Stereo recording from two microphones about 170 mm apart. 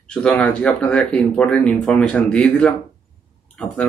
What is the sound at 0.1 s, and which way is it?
Speech, 5° left (ahead or behind).